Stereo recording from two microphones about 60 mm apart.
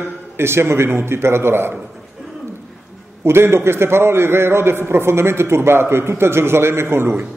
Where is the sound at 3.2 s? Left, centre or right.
Right.